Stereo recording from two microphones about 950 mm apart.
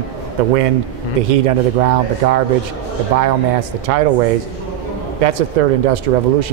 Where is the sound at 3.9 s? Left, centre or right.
Right.